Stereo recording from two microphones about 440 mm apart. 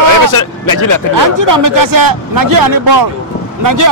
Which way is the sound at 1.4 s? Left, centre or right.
Right.